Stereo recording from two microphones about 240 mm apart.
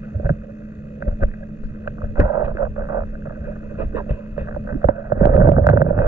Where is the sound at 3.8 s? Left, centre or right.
Centre.